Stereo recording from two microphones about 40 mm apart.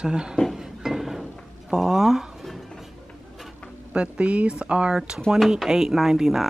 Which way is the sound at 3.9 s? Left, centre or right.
Right.